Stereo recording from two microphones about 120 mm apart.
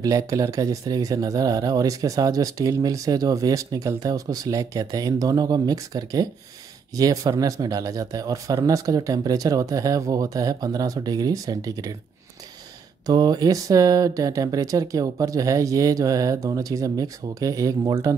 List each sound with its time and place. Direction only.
0.0 s speech: 30° right (ahead or behind)
13.0 s speech: 35° right (ahead or behind)